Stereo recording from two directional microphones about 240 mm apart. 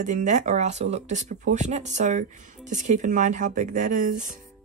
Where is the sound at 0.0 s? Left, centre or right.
Right.